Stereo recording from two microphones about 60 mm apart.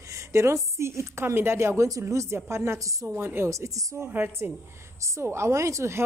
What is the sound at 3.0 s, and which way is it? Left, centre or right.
Speech, right.